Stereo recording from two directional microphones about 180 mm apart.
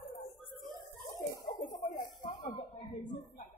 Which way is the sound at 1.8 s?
45° left (ahead or behind).